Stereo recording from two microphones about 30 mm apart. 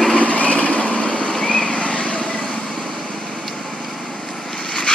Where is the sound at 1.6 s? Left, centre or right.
Left.